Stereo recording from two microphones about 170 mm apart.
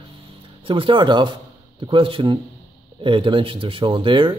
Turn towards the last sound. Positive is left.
turn(degrees=-30)  # may be behind; listen again after turning